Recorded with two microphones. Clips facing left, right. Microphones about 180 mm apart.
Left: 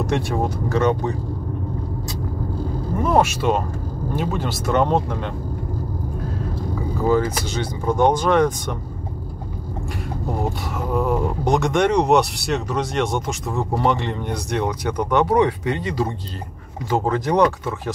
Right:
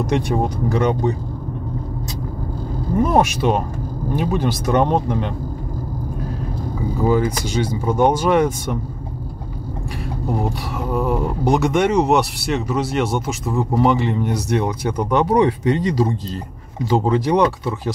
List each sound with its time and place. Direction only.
0.0 s speech: 15° right (ahead or behind)
3.1 s speech: 15° right (ahead or behind)
7.1 s speech: 10° right (ahead or behind)
10.9 s speech: centre (ahead or behind)
14.9 s speech: 30° right (ahead or behind)
16.9 s speech: 20° right (ahead or behind)